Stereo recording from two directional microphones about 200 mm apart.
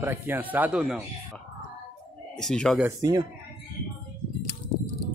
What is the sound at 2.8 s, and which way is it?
Speech, 15° right (ahead or behind).